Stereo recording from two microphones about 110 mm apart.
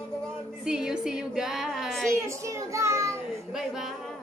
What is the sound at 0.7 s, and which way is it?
A woman's voice, 5° right (ahead or behind).